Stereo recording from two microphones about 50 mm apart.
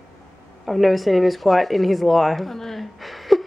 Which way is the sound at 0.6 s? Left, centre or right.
Centre.